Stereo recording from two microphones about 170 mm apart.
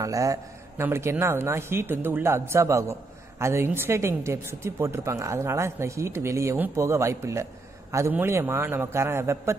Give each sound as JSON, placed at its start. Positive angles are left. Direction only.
{"t": 0.0, "sound": "a woman's voice", "side_deg": -20}